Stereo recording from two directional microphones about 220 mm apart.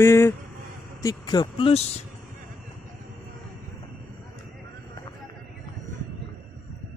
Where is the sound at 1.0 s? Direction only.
15° left (ahead or behind).